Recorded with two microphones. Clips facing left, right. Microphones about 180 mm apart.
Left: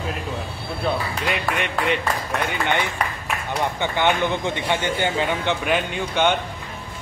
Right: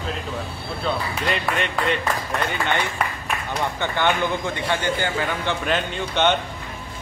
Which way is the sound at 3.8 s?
20° left (ahead or behind).